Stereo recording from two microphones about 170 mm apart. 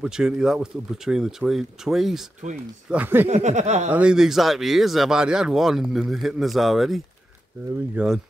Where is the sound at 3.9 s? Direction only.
5° right (ahead or behind).